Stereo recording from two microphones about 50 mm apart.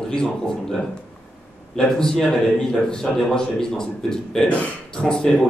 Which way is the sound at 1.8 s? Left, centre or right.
Centre.